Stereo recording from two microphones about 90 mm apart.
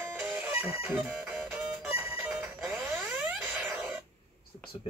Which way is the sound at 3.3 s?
10° right (ahead or behind).